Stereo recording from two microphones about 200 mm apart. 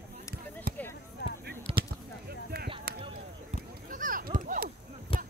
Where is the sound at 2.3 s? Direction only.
50° right (ahead or behind).